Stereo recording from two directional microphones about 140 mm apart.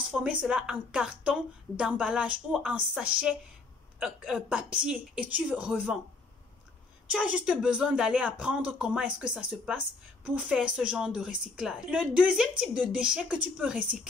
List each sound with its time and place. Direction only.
0.1 s a woman's voice: 5° right (ahead or behind)
7.1 s a woman's voice: 10° right (ahead or behind)